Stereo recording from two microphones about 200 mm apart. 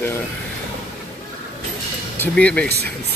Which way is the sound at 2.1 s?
5° left (ahead or behind).